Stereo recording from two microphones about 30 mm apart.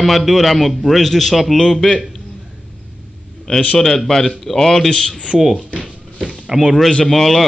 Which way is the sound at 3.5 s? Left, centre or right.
Left.